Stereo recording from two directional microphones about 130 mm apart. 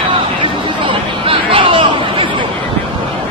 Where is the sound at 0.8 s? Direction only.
40° right (ahead or behind).